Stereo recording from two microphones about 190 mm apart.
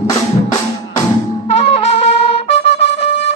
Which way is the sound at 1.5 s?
35° left (ahead or behind).